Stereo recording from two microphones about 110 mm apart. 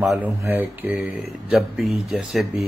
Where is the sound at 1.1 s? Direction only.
Centre (ahead or behind).